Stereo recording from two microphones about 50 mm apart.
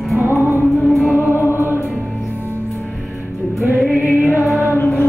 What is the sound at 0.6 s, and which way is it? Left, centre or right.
Music, centre.